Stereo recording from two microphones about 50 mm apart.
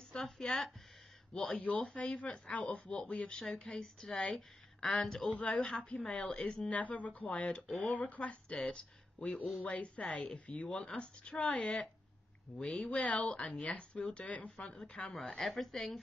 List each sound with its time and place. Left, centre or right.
0.1 s speech: centre
1.6 s speech: left; by 5.3 s centre
5.3 s speech: left
6.7 s speech: left
7.6 s speech: centre
7.9 s speech: left
12.8 s speech: left
15.1 s speech: centre